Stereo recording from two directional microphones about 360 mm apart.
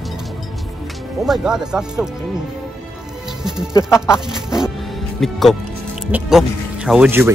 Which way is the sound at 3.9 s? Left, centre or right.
Centre.